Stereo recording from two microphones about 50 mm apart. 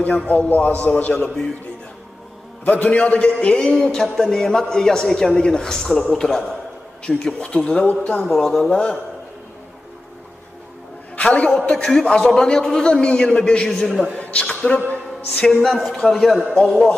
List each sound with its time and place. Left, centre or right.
0.0 s a man's voice: left
1.1 s a man's voice: centre
2.6 s a man's voice: left
7.8 s a man's voice: left
8.4 s a man's voice: centre
11.1 s a man's voice: left
13.7 s speech: centre
14.1 s a sound: left
15.5 s speech: centre
16.5 s a man's voice: centre